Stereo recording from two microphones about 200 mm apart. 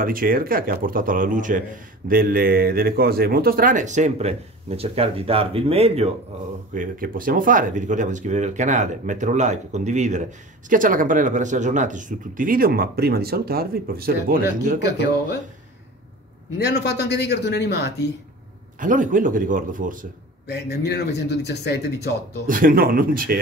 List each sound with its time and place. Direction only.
0.0 s speech: 45° right (ahead or behind)
6.7 s speech: 45° right (ahead or behind)
16.5 s speech: 55° left (ahead or behind)
18.8 s speech: 40° right (ahead or behind)
20.5 s speech: 55° left (ahead or behind)
22.5 s speech: 45° right (ahead or behind)